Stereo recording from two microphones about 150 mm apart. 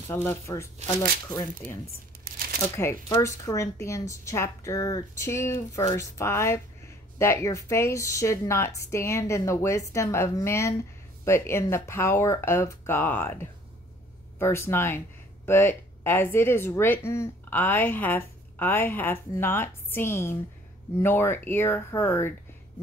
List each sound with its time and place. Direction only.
0.1 s a woman's voice: 15° left (ahead or behind)
2.8 s a woman's voice: 20° left (ahead or behind)